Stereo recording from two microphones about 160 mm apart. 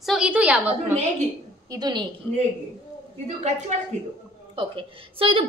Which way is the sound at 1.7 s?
25° right (ahead or behind).